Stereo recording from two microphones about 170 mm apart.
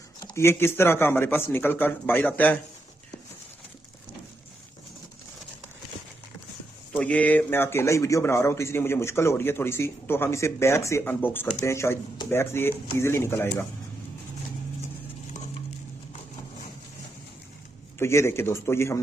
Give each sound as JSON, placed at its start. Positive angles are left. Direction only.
{"t": 0.2, "sound": "a man's voice", "side_deg": 20}
{"t": 6.9, "sound": "a man's voice", "side_deg": 10}
{"t": 17.9, "sound": "a man's voice", "side_deg": 15}